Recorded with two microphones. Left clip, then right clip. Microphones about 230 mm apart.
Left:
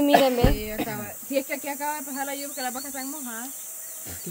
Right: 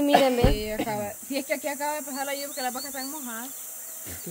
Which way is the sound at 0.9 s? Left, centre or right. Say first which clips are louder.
Left 1 dB; right.